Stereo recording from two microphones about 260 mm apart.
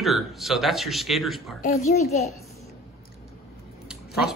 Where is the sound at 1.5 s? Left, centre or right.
Left.